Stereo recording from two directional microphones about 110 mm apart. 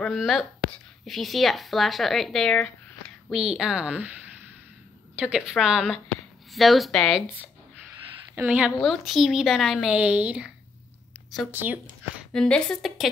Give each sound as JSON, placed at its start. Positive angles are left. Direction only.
{"t": 0.1, "sound": "a woman's voice", "side_deg": -5}
{"t": 8.4, "sound": "a woman's voice", "side_deg": -10}
{"t": 8.7, "sound": "speech", "side_deg": 0}
{"t": 9.8, "sound": "a woman's voice", "side_deg": -10}
{"t": 11.5, "sound": "a woman's voice", "side_deg": -15}
{"t": 12.3, "sound": "a woman's voice", "side_deg": 10}